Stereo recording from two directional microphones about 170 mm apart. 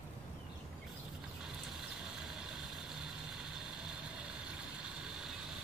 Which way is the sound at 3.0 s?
5° right (ahead or behind).